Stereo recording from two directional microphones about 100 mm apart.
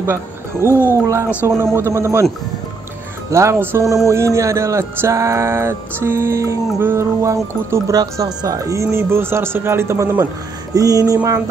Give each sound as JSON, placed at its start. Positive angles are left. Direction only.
{"t": 0.0, "sound": "a sound", "side_deg": -25}
{"t": 0.7, "sound": "speech", "side_deg": 25}
{"t": 1.6, "sound": "speech", "side_deg": -25}
{"t": 3.3, "sound": "speech", "side_deg": -30}
{"t": 3.8, "sound": "speech", "side_deg": -5}
{"t": 4.1, "sound": "speech", "side_deg": -30}
{"t": 10.7, "sound": "a sound", "side_deg": -35}